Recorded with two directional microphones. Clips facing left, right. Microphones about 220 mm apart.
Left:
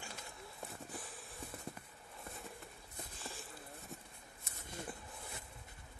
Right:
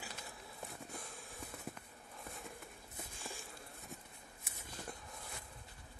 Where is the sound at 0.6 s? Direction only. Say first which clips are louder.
Left 1 dB; centre (ahead or behind).